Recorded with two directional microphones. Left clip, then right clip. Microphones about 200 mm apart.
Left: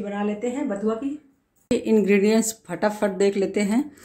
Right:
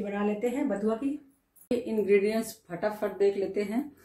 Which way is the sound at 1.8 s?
40° left (ahead or behind).